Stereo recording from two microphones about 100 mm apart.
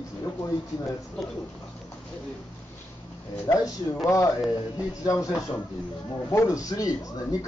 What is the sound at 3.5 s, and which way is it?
Speech, 50° left (ahead or behind).